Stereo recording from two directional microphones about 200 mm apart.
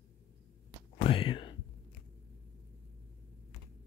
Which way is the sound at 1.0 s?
25° left (ahead or behind).